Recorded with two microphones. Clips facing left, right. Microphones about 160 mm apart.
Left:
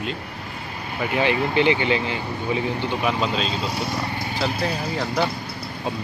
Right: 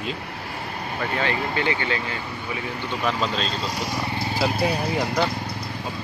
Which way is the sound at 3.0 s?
5° left (ahead or behind).